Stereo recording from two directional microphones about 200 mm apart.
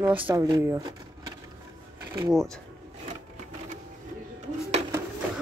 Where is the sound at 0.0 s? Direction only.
10° right (ahead or behind).